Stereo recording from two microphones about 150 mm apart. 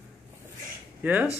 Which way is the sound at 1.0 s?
10° right (ahead or behind).